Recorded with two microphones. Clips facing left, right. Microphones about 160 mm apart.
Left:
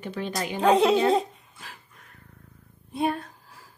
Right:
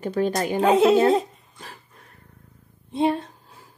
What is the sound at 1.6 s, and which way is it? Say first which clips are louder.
Dog: right 4 dB; 35° right (ahead or behind).